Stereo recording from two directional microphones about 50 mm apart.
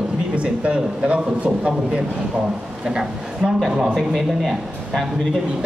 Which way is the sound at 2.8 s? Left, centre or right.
Centre.